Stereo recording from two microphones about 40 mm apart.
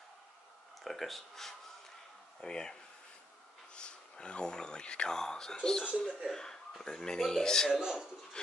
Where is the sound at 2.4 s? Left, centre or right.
Centre.